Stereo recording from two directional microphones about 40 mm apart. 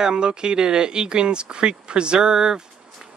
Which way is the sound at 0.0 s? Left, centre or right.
Right.